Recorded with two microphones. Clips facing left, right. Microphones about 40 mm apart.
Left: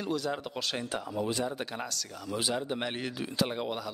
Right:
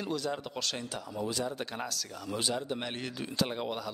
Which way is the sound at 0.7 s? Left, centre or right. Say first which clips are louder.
Left 4 dB; left.